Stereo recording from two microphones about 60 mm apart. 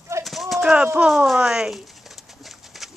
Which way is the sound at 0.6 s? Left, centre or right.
Centre.